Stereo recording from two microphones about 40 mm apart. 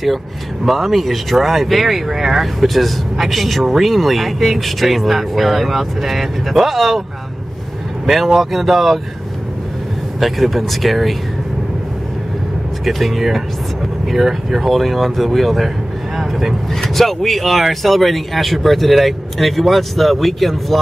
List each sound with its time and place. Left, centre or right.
0.7 s speech: centre
8.1 s speech: centre
10.2 s speech: centre
12.8 s speech: centre
16.9 s speech: centre